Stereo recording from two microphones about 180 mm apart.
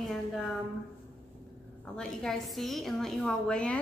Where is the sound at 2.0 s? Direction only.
Centre (ahead or behind).